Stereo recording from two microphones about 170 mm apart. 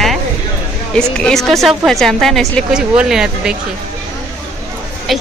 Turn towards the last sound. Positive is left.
turn(degrees=0)  # may be behind; listen again after turning